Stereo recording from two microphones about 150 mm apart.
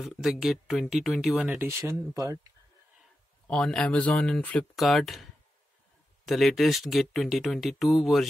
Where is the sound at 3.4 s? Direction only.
5° left (ahead or behind).